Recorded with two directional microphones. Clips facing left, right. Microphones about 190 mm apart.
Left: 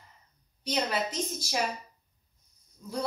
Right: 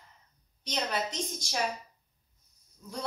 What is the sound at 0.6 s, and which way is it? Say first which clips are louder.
Speech: left 3 dB; 5° left (ahead or behind).